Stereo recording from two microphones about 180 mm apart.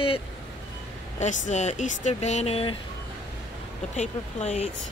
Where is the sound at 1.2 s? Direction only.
40° left (ahead or behind).